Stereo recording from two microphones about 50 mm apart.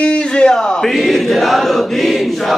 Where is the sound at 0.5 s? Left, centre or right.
Centre.